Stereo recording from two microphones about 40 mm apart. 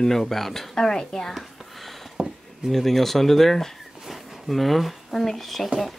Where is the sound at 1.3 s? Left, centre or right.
Centre.